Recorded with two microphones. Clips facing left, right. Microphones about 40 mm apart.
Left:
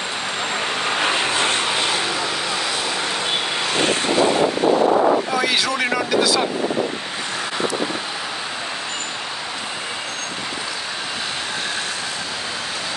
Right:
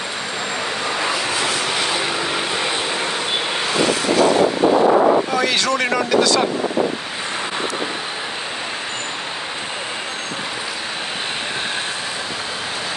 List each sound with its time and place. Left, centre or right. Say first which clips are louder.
0.8 s vehicle: left 2 dB; left
5.4 s speech: right 1 dB; centre